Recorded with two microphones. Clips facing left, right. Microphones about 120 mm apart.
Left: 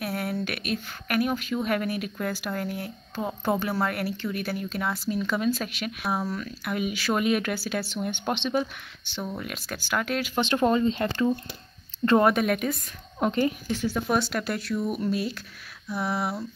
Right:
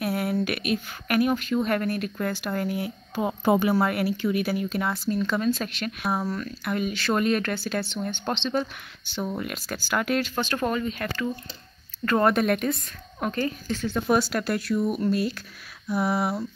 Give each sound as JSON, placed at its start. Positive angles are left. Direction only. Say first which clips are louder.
{"t": 0.0, "sound": "speech", "louder": "right 4 dB", "side_deg": 0}
{"t": 9.0, "sound": "speech", "louder": "right 4 dB", "side_deg": 0}
{"t": 10.3, "sound": "speech", "louder": "left 3 dB", "side_deg": 20}
{"t": 12.2, "sound": "speech", "louder": "right 4 dB", "side_deg": 5}
{"t": 13.2, "sound": "speech", "louder": "left 3 dB", "side_deg": 20}
{"t": 14.0, "sound": "speech", "louder": "right 6 dB", "side_deg": -5}